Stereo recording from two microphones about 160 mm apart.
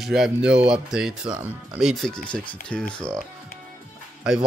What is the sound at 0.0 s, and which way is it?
Speech, 5° right (ahead or behind).